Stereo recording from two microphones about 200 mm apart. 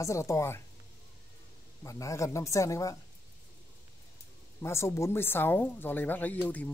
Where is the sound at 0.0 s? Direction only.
15° left (ahead or behind).